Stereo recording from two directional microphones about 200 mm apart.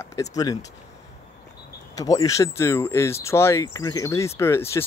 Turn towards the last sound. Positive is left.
turn(degrees=15)  # may be behind; listen again after turning